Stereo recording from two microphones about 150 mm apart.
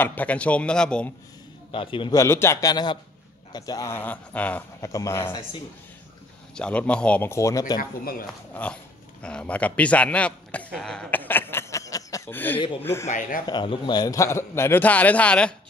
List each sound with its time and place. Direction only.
0.0 s a man's voice: 10° left (ahead or behind)
1.7 s a man's voice: 35° left (ahead or behind)
2.1 s a man's voice: 15° left (ahead or behind)
4.8 s a man's voice: 20° left (ahead or behind)
6.5 s a man's voice: 5° left (ahead or behind); by 7.8 s 25° left (ahead or behind)
8.3 s a man's voice: 10° left (ahead or behind)
13.5 s a man's voice: 30° left (ahead or behind); by 15.5 s 5° left (ahead or behind)